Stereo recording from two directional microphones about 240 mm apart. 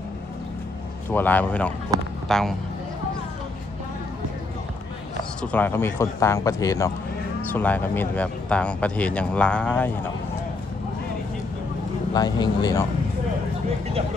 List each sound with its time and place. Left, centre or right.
1.1 s speech: centre
1.9 s speech: centre
2.2 s speech: centre
5.4 s speech: centre
12.1 s speech: centre